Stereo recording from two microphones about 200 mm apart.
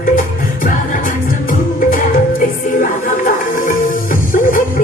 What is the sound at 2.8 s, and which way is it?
Music, 40° left (ahead or behind).